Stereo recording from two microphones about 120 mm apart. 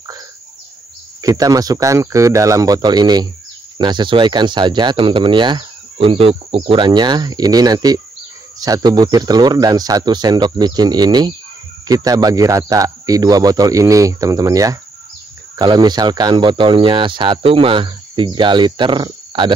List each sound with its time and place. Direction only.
1.2 s speech: 30° right (ahead or behind)